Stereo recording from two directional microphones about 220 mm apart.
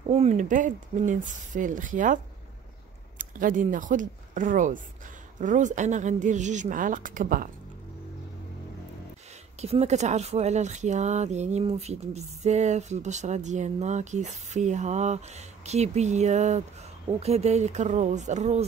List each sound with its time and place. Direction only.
0.1 s speech: 30° right (ahead or behind)
3.2 s speech: 35° right (ahead or behind)
9.6 s speech: 30° right (ahead or behind)